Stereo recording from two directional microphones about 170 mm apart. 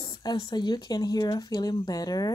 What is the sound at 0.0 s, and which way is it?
Speech, 25° left (ahead or behind).